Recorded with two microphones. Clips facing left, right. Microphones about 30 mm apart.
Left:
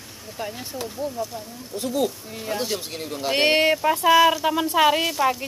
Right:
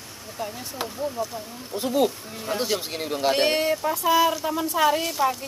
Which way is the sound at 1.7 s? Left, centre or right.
Centre.